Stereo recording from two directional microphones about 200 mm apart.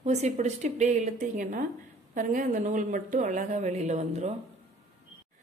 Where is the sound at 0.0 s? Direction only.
35° right (ahead or behind).